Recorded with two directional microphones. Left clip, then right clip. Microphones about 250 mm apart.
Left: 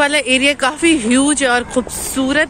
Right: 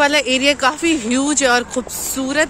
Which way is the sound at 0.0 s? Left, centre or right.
Centre.